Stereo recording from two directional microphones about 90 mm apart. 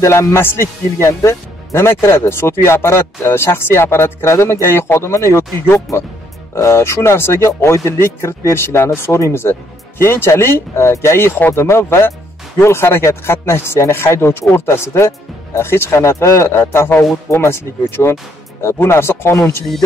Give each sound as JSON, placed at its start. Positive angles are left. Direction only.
{"t": 0.0, "sound": "speech", "side_deg": 30}
{"t": 5.9, "sound": "speech", "side_deg": 0}
{"t": 6.5, "sound": "speech", "side_deg": 30}